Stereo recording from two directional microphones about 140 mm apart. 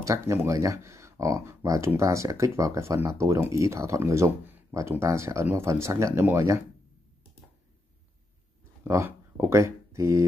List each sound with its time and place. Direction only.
0.0 s speech: 20° right (ahead or behind)
8.8 s speech: 20° right (ahead or behind)